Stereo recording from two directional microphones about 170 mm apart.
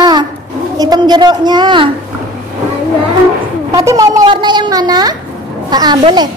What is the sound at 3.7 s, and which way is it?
A woman's voice, 20° right (ahead or behind).